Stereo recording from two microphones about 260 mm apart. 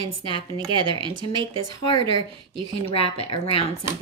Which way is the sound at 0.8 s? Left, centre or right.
Centre.